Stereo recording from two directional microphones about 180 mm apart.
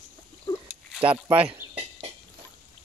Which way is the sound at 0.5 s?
20° left (ahead or behind).